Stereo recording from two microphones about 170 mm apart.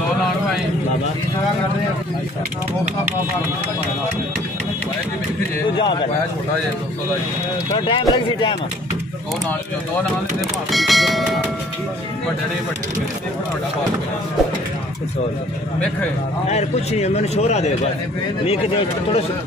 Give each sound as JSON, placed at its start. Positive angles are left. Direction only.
{"t": 7.9, "sound": "speech", "side_deg": 30}
{"t": 10.7, "sound": "speech", "side_deg": 0}
{"t": 16.4, "sound": "a man's voice", "side_deg": 40}